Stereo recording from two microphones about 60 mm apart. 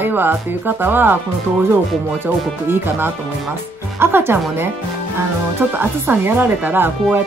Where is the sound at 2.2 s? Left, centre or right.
Right.